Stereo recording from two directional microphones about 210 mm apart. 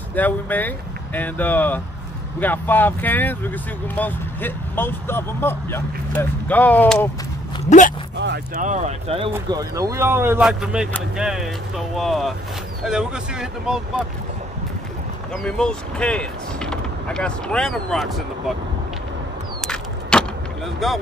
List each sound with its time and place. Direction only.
0.1 s speech: 10° left (ahead or behind)
8.5 s speech: 35° right (ahead or behind)
9.3 s speech: 15° right (ahead or behind)
15.3 s speech: 5° left (ahead or behind)
19.7 s keys jangling: 5° left (ahead or behind)